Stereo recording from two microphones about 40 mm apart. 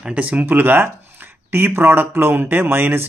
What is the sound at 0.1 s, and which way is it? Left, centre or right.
Speech, right.